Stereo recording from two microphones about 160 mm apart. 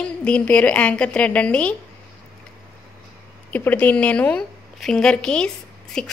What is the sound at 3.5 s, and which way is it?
A woman's voice, 10° left (ahead or behind).